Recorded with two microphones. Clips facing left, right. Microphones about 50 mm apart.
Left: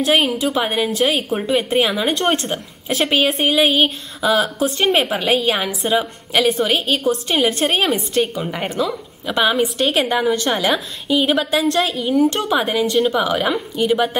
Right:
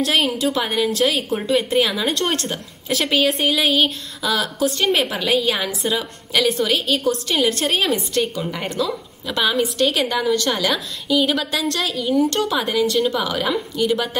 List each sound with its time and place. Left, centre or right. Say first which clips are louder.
0.0 s a woman's voice: left 2 dB; centre